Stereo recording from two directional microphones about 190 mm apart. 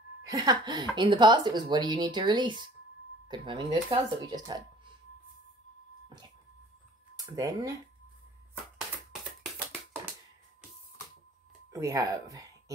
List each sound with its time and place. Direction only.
0.2 s speech: 20° right (ahead or behind)
7.2 s speech: 20° right (ahead or behind)
11.7 s speech: 15° right (ahead or behind)